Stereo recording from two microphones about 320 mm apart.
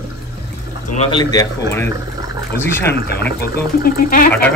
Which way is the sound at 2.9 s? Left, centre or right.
Left.